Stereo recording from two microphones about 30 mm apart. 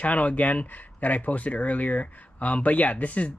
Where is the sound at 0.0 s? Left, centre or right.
Left.